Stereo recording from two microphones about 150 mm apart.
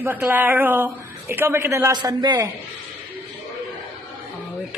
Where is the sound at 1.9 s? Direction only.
25° right (ahead or behind).